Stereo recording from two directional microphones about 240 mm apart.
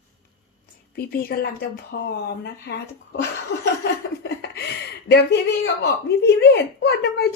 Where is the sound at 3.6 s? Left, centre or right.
Left.